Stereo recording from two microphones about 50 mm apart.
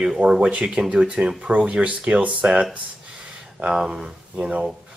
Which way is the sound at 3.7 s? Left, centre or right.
Centre.